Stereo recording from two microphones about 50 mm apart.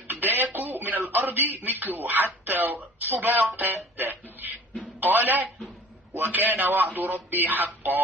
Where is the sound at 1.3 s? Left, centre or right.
Right.